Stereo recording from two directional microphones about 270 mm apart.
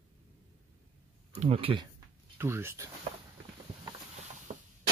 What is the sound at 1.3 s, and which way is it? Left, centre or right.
Speech, right.